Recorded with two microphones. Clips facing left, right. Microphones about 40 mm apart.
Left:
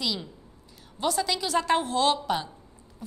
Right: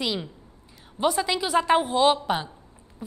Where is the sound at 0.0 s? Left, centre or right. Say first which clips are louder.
Right 3 dB; right.